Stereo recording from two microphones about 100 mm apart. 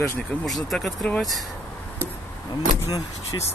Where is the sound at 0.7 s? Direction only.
Centre (ahead or behind).